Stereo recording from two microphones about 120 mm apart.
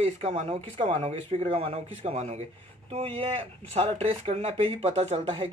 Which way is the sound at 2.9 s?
55° right (ahead or behind).